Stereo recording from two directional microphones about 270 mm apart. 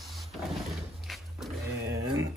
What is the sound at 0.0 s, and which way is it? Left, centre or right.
Drawer open or close, centre.